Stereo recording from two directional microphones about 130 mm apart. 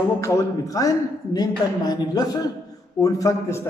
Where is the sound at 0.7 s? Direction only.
30° left (ahead or behind).